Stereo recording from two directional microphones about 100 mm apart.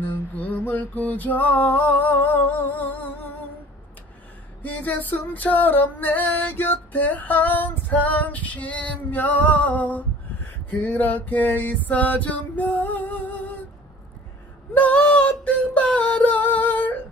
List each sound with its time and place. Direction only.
0.0 s music: 20° left (ahead or behind)
4.6 s music: 15° left (ahead or behind)
14.7 s a sound: 15° left (ahead or behind)